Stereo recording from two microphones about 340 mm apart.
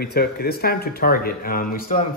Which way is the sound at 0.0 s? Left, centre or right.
Left.